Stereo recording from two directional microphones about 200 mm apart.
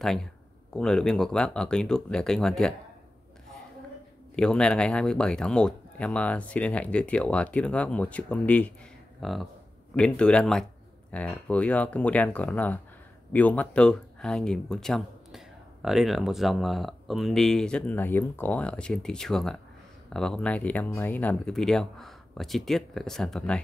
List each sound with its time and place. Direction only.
0.0 s speech: centre (ahead or behind)
4.4 s speech: 5° left (ahead or behind)